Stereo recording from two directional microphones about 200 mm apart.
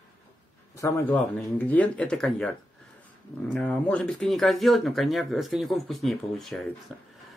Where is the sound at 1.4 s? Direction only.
10° left (ahead or behind).